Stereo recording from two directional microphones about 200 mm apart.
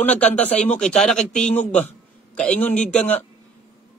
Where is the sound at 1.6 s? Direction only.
35° left (ahead or behind).